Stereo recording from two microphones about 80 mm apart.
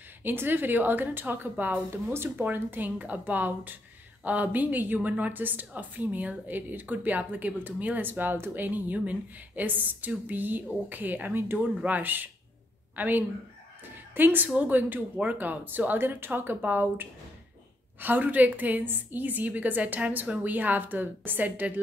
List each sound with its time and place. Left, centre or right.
0.2 s a woman's voice: right